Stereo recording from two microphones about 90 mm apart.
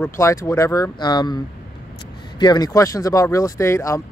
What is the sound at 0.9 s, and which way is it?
Speech, 50° left (ahead or behind).